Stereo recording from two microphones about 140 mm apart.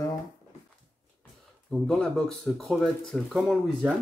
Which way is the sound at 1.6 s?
Centre (ahead or behind).